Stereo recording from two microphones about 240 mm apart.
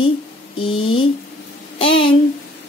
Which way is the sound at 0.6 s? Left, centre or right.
Left.